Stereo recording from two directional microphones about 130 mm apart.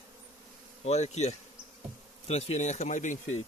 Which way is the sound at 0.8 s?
60° left (ahead or behind).